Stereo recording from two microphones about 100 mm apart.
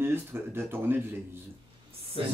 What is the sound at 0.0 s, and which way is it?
Speech, 20° right (ahead or behind).